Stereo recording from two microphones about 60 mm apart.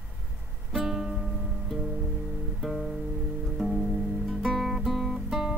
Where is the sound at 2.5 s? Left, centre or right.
Centre.